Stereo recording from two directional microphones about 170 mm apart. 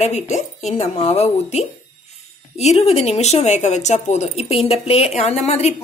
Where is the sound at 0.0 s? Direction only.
40° left (ahead or behind).